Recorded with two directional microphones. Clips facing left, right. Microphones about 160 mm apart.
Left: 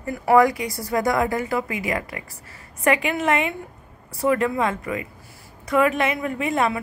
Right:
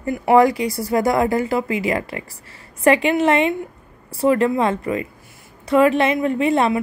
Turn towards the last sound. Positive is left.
turn(degrees=-30)  # may be behind; listen again after turning